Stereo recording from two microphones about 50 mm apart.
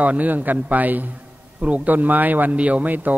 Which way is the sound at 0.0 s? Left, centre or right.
Right.